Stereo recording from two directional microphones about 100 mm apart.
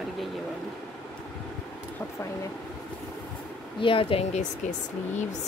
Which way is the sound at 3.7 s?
60° left (ahead or behind).